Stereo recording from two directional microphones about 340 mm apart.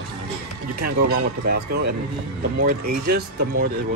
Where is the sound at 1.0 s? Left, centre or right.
Right.